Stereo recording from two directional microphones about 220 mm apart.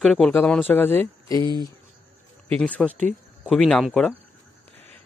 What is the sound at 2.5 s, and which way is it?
Speech, 5° left (ahead or behind).